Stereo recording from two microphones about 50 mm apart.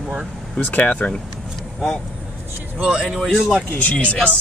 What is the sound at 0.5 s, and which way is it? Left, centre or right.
Speech, left.